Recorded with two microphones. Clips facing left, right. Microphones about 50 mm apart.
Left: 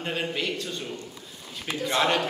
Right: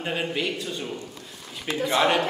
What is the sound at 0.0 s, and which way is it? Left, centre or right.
Speech, centre.